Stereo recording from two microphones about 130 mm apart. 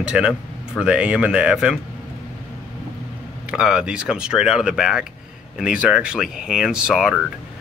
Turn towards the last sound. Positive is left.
turn(degrees=-5)  # may be behind; listen again after turning